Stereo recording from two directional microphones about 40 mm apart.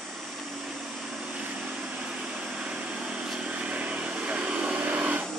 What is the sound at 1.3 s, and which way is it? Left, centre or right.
Vehicle, right.